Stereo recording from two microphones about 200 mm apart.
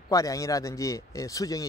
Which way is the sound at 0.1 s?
15° left (ahead or behind).